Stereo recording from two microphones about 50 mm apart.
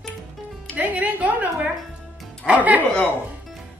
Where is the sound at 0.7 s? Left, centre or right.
Right.